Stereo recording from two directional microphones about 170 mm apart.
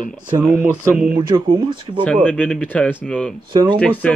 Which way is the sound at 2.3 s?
5° left (ahead or behind).